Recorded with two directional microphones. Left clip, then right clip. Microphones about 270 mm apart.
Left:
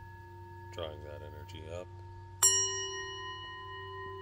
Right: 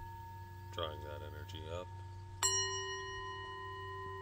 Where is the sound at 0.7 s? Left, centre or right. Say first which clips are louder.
Even; left.